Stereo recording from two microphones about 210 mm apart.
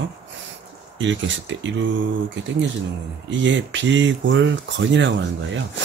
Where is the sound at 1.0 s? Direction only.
60° right (ahead or behind).